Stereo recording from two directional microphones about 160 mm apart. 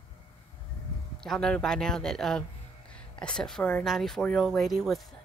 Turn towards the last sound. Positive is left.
turn(degrees=0)  # may be behind; listen again after turning